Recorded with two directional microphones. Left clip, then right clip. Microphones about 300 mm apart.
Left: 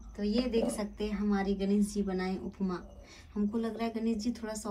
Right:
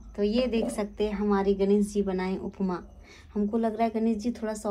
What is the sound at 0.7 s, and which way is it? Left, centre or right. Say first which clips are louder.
Speech: right 8 dB; right.